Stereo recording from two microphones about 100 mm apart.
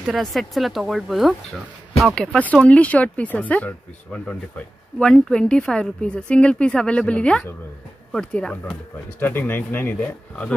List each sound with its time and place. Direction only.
0.0 s speech: centre (ahead or behind)
2.3 s speech: 10° left (ahead or behind)